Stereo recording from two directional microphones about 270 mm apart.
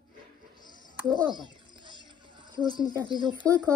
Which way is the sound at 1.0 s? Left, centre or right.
Centre.